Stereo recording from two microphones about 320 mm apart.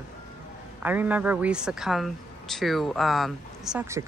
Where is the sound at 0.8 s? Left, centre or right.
Centre.